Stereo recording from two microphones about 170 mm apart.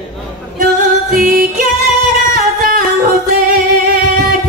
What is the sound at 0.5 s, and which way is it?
Music, 50° right (ahead or behind).